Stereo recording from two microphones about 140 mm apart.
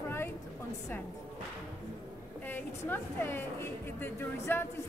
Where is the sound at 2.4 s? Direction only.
15° left (ahead or behind).